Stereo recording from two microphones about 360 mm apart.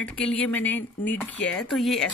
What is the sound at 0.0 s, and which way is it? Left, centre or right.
Speech, centre.